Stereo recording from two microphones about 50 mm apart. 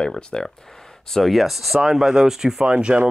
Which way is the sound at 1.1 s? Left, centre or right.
Centre.